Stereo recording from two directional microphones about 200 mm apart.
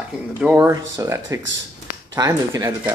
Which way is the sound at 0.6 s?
15° right (ahead or behind).